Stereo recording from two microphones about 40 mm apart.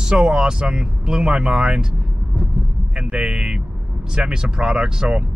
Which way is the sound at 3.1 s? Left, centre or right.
Right.